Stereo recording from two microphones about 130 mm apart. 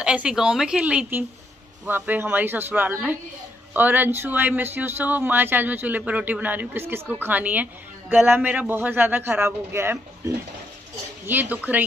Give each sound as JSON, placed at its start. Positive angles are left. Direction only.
{"t": 0.0, "sound": "speech", "side_deg": -5}